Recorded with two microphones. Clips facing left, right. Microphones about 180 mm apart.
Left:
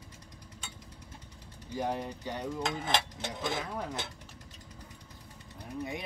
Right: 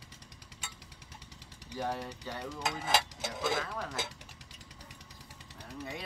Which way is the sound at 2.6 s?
5° right (ahead or behind).